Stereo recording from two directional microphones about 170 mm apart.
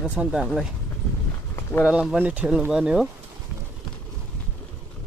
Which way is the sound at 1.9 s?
5° right (ahead or behind).